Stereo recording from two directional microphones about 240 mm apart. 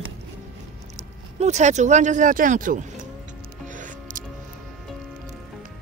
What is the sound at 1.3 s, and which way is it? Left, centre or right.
Speech, right.